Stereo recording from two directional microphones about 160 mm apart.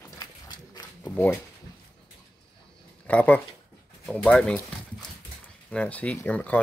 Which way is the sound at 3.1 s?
10° left (ahead or behind).